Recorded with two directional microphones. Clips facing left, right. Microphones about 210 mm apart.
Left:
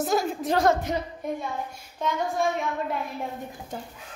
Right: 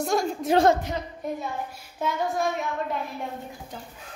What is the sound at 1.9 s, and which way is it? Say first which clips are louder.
Child singing: even; 5° right (ahead or behind).